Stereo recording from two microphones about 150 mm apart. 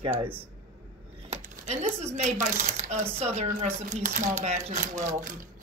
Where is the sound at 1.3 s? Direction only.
45° right (ahead or behind).